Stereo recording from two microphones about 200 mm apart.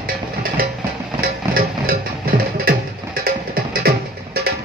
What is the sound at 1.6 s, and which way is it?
Music, 45° right (ahead or behind).